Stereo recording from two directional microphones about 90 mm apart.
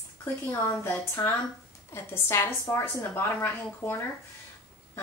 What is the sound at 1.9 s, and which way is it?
A woman's voice, 25° left (ahead or behind).